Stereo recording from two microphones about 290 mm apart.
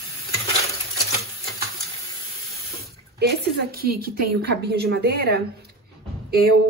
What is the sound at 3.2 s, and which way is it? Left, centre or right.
Speech, right.